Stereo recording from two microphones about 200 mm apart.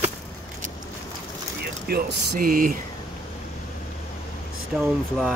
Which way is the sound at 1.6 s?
55° right (ahead or behind).